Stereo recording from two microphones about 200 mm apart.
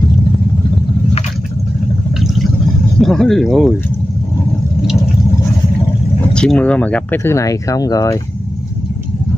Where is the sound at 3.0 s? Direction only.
Centre (ahead or behind).